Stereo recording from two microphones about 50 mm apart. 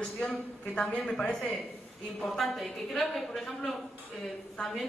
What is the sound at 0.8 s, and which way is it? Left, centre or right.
A woman's voice, centre.